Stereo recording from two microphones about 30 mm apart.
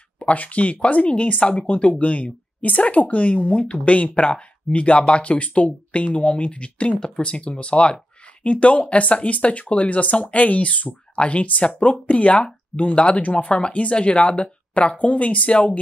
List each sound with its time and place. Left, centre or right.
0.2 s speech: left
1.7 s speech: left
14.7 s speech: left